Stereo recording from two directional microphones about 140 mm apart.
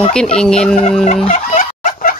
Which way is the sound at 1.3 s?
70° left (ahead or behind).